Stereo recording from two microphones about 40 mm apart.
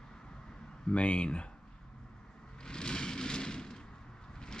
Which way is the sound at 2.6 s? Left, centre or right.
Left.